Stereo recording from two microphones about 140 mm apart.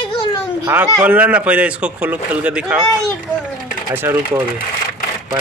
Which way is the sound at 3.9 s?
15° right (ahead or behind).